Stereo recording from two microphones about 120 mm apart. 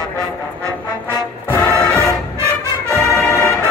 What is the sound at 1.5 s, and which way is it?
Music, 10° left (ahead or behind).